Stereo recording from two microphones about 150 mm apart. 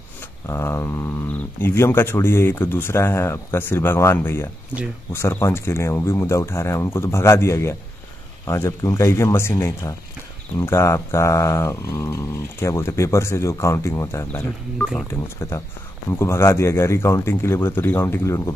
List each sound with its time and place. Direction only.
0.5 s speech: 20° left (ahead or behind)
14.8 s speech: 5° left (ahead or behind)
15.4 s speech: 20° left (ahead or behind)